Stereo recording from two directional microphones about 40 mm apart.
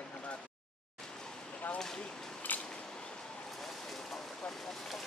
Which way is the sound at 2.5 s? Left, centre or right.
Left.